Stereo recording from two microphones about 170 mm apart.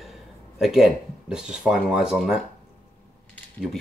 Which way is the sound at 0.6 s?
Centre (ahead or behind).